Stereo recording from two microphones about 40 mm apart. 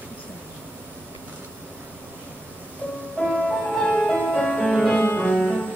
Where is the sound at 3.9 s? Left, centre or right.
Left.